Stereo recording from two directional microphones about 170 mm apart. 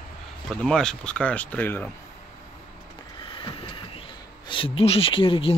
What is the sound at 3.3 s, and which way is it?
Vehicle, 30° left (ahead or behind).